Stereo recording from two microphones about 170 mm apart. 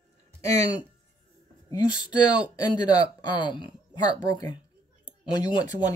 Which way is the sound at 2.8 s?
25° left (ahead or behind).